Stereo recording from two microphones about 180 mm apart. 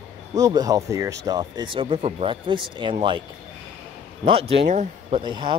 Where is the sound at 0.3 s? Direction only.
20° right (ahead or behind).